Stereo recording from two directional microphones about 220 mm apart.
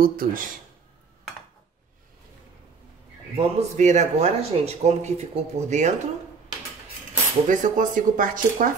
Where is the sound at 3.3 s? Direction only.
30° right (ahead or behind).